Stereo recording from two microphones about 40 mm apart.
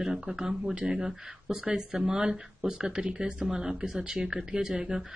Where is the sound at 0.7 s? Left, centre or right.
Right.